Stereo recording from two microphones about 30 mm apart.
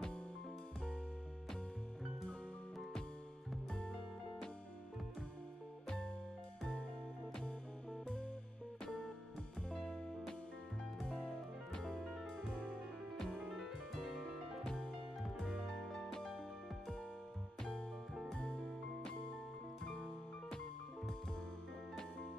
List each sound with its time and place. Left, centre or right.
5.9 s music: left
9.7 s music: left
11.1 s music: left
13.5 s music: centre; by 14.9 s left
15.2 s music: centre
15.9 s music: centre
19.8 s music: left